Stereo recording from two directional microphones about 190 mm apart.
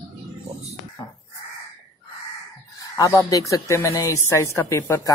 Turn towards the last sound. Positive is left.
turn(degrees=15)  # may be behind; listen again after turning